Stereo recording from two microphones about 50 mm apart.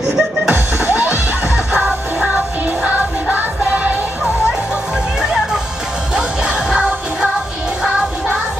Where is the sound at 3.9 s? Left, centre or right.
Left.